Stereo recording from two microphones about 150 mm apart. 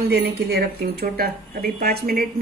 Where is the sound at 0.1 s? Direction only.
90° right.